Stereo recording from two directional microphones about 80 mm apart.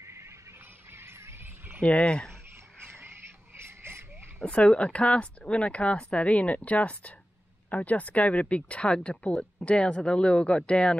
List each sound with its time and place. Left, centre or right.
0.0 s music: right
0.9 s a sound: right
1.8 s speech: centre
2.8 s frog: right
4.4 s speech: centre